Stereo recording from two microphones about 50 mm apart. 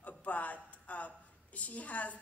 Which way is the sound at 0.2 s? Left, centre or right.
Left.